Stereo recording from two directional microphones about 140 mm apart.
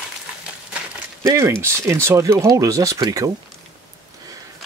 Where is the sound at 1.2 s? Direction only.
20° right (ahead or behind).